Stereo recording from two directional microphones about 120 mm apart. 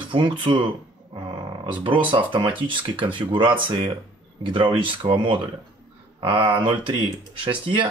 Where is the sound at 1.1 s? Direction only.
40° right (ahead or behind).